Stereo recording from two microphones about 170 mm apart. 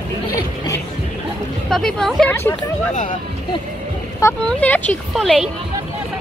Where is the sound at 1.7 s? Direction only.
5° left (ahead or behind).